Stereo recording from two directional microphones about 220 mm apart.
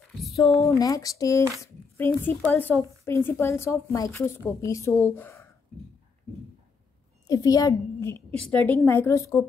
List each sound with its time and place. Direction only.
0.6 s speech: 15° left (ahead or behind)
7.2 s speech: 15° left (ahead or behind)